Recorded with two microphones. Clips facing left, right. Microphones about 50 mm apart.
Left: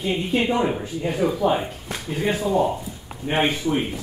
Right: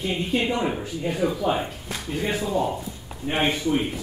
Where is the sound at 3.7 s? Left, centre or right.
Left.